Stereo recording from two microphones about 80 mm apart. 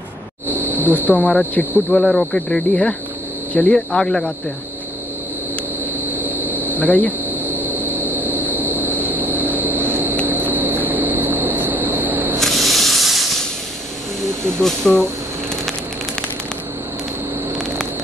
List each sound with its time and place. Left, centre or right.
0.5 s a sound: right
1.0 s speech: centre
1.9 s speech: centre
6.0 s vehicle: right
6.8 s speech: left
7.2 s vehicle: right
12.4 s spray: centre
14.6 s speech: centre